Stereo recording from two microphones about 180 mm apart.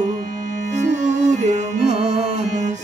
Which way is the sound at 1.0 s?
40° right (ahead or behind).